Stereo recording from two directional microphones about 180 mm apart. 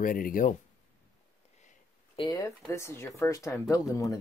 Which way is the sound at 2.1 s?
25° left (ahead or behind).